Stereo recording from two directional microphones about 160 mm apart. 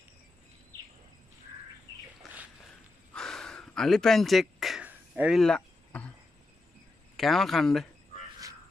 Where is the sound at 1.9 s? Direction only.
20° left (ahead or behind).